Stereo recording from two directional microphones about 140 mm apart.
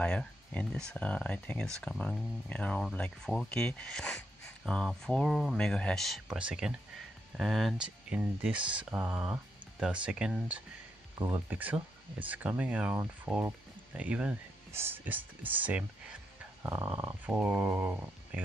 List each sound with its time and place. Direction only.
0.0 s speech: 10° left (ahead or behind)
11.1 s speech: 20° right (ahead or behind)